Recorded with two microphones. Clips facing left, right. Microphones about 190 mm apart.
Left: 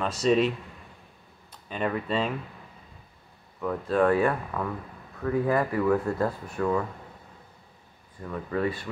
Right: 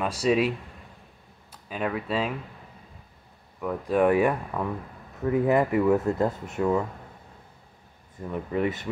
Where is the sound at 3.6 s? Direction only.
10° right (ahead or behind).